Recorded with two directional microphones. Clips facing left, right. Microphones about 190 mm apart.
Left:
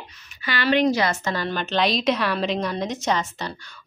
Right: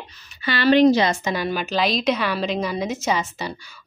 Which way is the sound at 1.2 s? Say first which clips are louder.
Right 2 dB; 10° right (ahead or behind).